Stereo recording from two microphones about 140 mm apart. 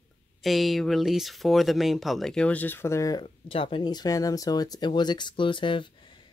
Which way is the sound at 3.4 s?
40° left (ahead or behind).